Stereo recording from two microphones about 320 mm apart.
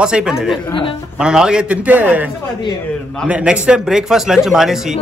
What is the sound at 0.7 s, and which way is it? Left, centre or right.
Speech, centre.